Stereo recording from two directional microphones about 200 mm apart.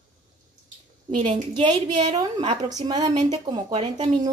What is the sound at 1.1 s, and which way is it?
A woman's voice, 35° right (ahead or behind).